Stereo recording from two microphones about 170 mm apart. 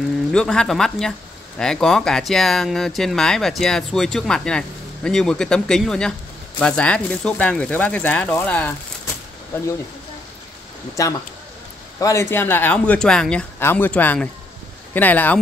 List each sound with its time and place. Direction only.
0.3 s speech: 5° left (ahead or behind)
11.0 s speech: 20° left (ahead or behind)